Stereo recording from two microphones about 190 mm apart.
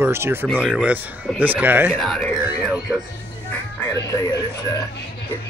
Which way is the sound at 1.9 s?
5° left (ahead or behind).